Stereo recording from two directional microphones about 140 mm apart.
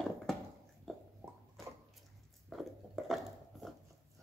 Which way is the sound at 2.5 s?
Centre (ahead or behind).